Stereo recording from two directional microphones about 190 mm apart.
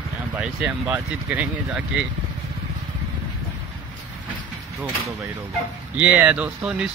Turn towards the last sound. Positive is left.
turn(degrees=-5)  # may be behind; listen again after turning